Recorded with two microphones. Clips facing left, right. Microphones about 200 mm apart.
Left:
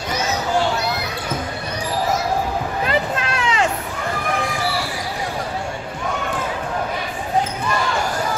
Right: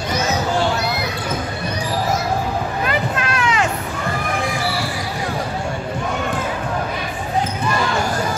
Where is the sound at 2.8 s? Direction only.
25° left (ahead or behind).